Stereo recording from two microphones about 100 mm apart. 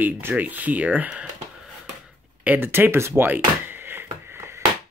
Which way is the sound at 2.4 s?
20° right (ahead or behind).